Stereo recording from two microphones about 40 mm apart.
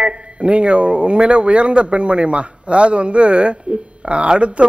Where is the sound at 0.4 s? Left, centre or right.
Right.